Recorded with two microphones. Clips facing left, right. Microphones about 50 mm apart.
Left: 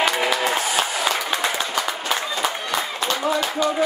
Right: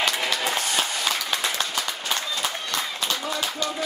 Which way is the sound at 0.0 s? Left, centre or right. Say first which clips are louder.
Left 5 dB; centre.